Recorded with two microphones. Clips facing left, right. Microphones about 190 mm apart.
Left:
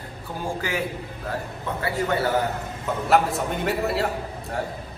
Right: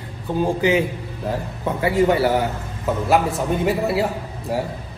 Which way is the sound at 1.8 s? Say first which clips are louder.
Right 8 dB; 15° right (ahead or behind).